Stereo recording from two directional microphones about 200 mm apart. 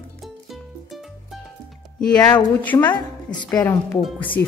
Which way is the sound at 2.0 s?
5° left (ahead or behind).